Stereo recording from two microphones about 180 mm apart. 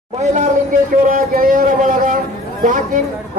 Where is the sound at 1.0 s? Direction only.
50° right (ahead or behind).